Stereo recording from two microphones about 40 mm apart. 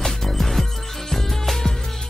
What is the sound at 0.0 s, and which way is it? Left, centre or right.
Music, centre.